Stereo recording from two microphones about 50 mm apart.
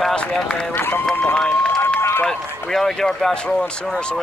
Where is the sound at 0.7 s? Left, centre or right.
Left.